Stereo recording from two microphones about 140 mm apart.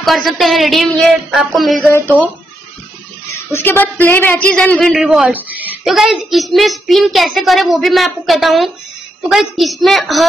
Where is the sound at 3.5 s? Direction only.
15° left (ahead or behind).